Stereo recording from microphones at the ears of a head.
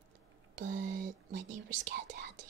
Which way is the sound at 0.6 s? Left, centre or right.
Right.